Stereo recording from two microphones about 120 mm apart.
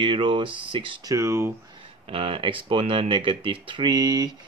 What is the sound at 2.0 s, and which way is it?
Speech, 50° right (ahead or behind).